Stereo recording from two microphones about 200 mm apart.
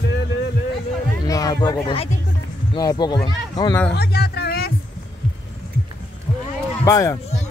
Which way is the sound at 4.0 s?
50° left (ahead or behind).